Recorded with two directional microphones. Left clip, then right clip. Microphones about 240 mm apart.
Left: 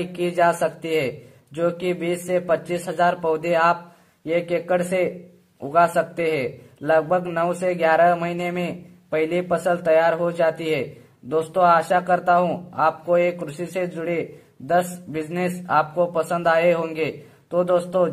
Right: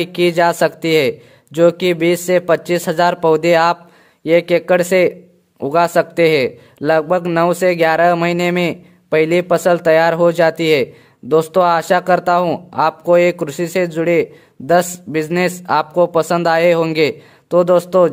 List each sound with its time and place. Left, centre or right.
0.0 s a man's voice: right